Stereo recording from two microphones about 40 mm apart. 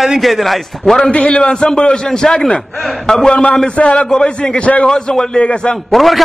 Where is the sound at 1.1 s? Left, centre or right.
Left.